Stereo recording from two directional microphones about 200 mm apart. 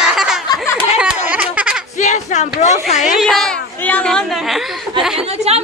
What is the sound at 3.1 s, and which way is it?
Speech, centre (ahead or behind).